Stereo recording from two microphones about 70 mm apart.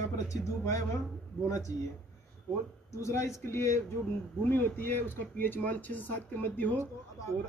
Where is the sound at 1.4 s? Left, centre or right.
Left.